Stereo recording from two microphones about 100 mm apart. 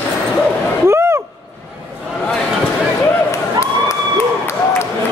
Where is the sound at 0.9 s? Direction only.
25° right (ahead or behind).